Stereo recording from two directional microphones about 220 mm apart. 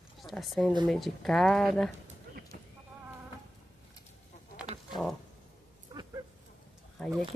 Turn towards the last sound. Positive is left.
turn(degrees=0)  # may be behind; listen again after turning